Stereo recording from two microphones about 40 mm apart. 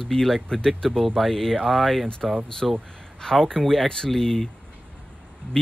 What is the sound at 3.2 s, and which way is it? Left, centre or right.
Speech, centre.